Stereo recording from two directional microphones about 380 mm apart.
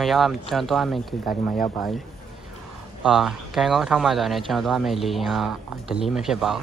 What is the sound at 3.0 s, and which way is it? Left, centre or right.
Speech, centre.